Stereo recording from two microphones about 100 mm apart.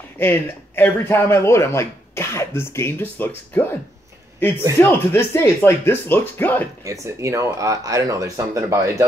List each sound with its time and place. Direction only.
0.2 s speech: 20° left (ahead or behind)
4.7 s speech: 20° left (ahead or behind)
6.8 s speech: 30° right (ahead or behind)